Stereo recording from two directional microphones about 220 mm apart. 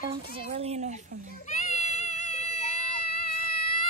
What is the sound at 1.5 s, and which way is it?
Baby cry, 35° left (ahead or behind).